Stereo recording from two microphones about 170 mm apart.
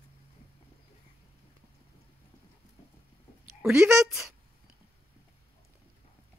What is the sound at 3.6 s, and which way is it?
Speech, 5° right (ahead or behind).